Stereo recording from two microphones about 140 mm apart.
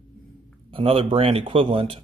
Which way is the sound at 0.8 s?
40° right (ahead or behind).